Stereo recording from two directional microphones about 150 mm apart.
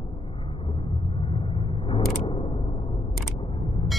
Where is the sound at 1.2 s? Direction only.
35° left (ahead or behind).